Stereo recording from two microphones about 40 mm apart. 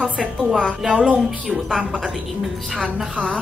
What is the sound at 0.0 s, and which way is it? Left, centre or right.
Speech, centre.